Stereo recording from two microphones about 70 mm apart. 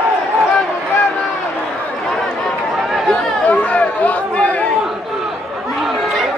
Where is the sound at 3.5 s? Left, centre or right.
Left.